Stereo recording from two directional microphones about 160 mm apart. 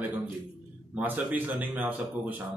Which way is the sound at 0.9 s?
10° right (ahead or behind).